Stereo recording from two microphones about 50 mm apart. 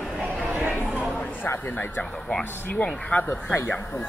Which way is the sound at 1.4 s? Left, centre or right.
Left.